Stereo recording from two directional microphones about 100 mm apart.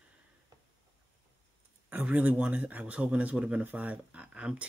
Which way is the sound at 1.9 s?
15° right (ahead or behind).